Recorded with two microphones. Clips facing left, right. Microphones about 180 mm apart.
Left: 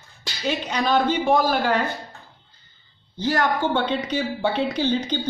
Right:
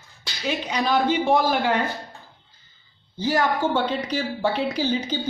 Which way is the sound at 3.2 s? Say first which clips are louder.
Even; 10° right (ahead or behind).